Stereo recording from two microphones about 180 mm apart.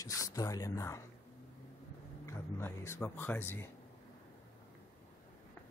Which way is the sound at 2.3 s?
15° left (ahead or behind).